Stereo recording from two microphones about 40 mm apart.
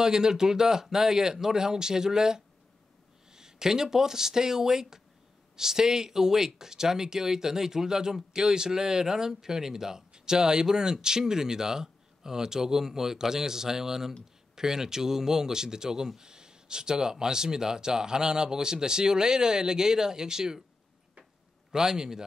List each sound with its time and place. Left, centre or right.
0.0 s speech: centre
21.7 s speech: centre